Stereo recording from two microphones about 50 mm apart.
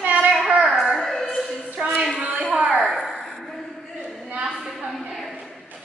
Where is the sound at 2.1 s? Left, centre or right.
Centre.